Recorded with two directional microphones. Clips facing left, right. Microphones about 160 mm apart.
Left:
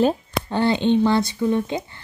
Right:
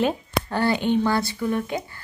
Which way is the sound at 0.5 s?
20° left (ahead or behind).